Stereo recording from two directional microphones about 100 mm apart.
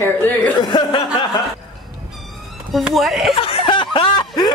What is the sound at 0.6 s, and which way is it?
Speech, 45° left (ahead or behind).